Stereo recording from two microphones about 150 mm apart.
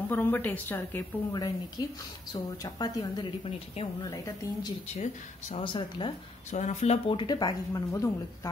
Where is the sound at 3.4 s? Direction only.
40° left (ahead or behind).